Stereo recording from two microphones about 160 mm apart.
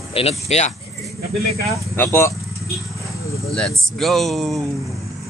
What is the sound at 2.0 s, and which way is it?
Speech, 15° left (ahead or behind).